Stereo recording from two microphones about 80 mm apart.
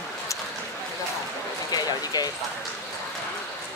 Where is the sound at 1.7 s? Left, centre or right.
Left.